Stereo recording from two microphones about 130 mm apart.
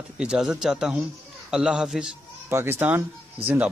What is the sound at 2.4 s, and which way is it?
Speech, 20° right (ahead or behind).